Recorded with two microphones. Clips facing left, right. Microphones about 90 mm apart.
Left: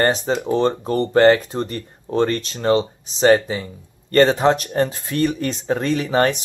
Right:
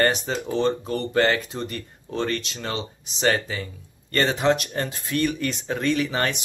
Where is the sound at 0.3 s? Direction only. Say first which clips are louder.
Left 5 dB; 45° left (ahead or behind).